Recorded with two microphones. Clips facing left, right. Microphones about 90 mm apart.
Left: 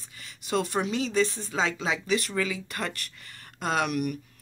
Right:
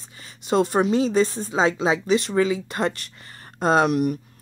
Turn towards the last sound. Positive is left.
turn(degrees=-30)  # may be behind; listen again after turning